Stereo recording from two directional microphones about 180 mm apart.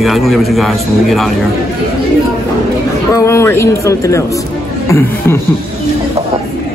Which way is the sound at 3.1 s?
15° left (ahead or behind).